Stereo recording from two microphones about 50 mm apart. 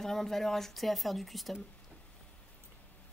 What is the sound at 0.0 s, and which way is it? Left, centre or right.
Speech, centre.